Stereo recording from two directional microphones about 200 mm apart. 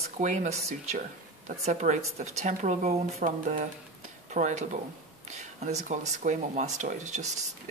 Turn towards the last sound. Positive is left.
turn(degrees=-35)  # may be behind; listen again after turning